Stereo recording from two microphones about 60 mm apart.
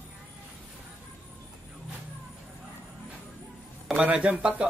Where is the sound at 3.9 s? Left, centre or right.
Right.